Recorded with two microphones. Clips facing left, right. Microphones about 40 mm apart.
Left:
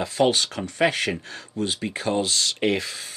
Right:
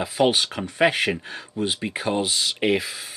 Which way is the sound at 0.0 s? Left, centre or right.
Centre.